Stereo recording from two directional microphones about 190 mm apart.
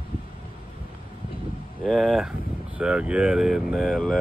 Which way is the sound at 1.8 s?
Centre (ahead or behind).